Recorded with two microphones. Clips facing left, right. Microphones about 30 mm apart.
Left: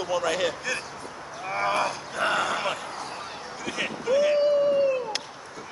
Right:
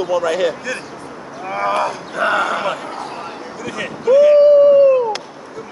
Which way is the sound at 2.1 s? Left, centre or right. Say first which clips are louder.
Right 9 dB; right.